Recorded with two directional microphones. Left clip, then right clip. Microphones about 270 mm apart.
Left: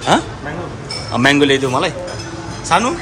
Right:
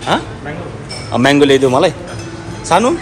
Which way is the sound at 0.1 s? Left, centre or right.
Centre.